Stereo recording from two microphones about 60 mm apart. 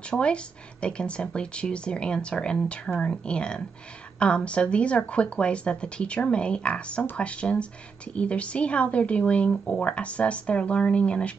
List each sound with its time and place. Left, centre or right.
0.1 s speech: centre